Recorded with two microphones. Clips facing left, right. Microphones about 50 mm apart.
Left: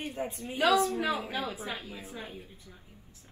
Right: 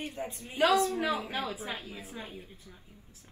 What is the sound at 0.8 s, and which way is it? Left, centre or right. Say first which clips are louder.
A woman's voice: even; left.